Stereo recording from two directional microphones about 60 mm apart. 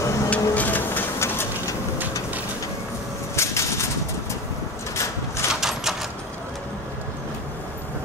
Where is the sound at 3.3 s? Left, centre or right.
Left.